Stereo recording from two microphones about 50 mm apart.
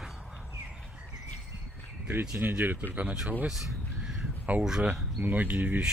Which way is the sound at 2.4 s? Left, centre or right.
Right.